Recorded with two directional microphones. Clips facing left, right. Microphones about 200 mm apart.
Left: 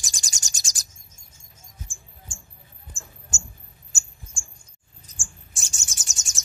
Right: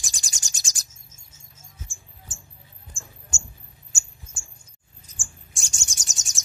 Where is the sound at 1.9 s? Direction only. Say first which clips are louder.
Left 1 dB; 15° left (ahead or behind).